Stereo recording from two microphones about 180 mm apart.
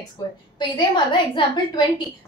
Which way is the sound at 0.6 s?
25° left (ahead or behind).